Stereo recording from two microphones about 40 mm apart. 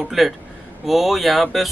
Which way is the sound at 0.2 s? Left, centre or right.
Centre.